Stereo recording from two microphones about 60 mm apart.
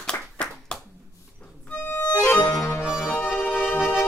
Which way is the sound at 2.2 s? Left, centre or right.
Left.